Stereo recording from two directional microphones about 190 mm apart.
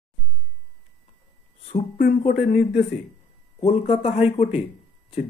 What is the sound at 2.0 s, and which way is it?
Speech, 50° left (ahead or behind).